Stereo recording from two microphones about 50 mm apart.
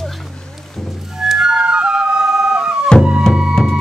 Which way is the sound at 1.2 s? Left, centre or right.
Centre.